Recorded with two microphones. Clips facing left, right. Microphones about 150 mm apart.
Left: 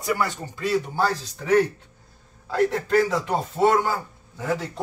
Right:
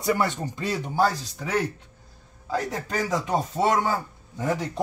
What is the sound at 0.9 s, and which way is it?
Speech, 10° right (ahead or behind).